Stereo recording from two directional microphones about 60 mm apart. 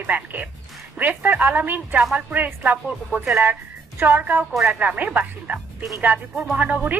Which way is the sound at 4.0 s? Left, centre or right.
Right.